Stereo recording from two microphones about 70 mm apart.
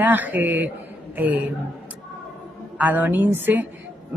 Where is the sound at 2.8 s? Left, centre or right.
Right.